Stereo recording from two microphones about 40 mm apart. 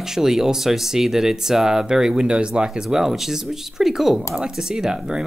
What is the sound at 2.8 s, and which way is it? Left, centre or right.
Speech, centre.